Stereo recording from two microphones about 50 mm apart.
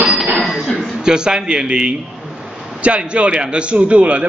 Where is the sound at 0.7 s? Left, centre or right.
Centre.